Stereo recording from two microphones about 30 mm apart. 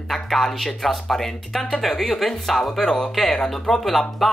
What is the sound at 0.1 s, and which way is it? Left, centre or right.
Speech, centre.